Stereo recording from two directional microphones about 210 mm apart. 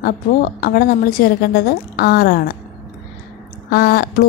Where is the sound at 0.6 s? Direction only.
45° left (ahead or behind).